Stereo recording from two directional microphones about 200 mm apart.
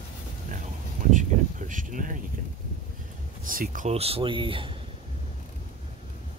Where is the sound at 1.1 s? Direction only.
40° right (ahead or behind).